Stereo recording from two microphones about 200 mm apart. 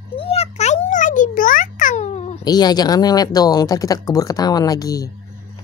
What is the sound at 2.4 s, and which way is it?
Speech, 20° left (ahead or behind).